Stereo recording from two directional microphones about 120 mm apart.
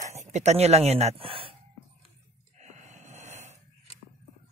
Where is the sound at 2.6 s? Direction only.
70° right (ahead or behind).